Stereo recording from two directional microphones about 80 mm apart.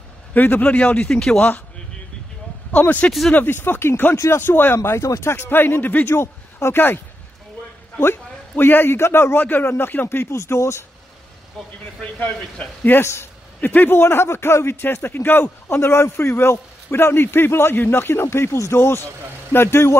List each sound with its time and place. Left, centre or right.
0.3 s a man's voice: left
2.7 s a man's voice: centre
3.1 s speech: centre
3.3 s a man's voice: left
4.7 s a man's voice: left
8.0 s a man's voice: left
11.6 s speech: centre
12.2 s a man's voice: left